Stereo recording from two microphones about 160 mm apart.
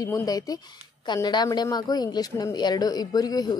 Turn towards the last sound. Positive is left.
turn(degrees=25)  # may be behind; listen again after turning